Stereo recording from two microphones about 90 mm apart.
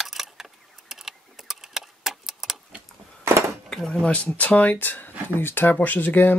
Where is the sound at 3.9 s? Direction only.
15° left (ahead or behind).